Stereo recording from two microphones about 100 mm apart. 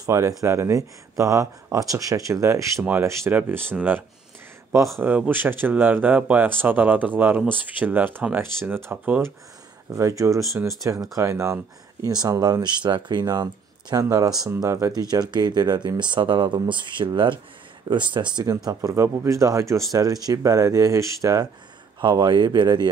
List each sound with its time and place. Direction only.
0.0 s speech: 35° right (ahead or behind)
2.8 s speech: 20° right (ahead or behind)
5.0 s speech: 15° right (ahead or behind)
9.9 s speech: 30° right (ahead or behind)
12.1 s speech: 45° right (ahead or behind)
18.5 s speech: 35° right (ahead or behind)
22.0 s speech: 45° right (ahead or behind)